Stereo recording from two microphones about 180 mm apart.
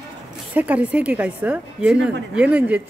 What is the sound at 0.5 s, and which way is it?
Speech, 10° right (ahead or behind).